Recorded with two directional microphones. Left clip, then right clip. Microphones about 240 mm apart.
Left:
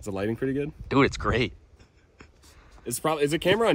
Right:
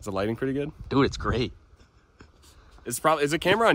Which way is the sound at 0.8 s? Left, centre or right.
Centre.